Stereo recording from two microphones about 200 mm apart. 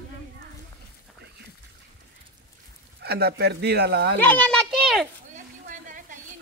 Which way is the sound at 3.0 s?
55° right (ahead or behind).